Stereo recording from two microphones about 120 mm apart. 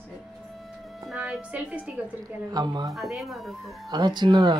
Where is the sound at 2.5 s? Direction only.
35° right (ahead or behind).